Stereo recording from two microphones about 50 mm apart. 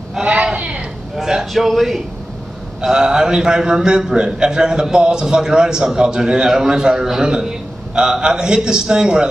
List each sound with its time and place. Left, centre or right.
0.2 s a sound: right
1.1 s a man's voice: centre
2.8 s a man's voice: centre